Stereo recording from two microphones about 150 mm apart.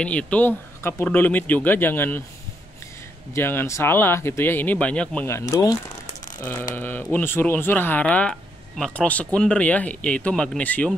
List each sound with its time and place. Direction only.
0.0 s speech: 10° left (ahead or behind)
3.3 s speech: 15° left (ahead or behind)